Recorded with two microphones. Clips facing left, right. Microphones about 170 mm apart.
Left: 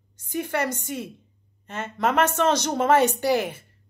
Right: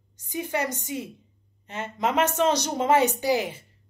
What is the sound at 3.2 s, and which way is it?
Speech, 60° left (ahead or behind).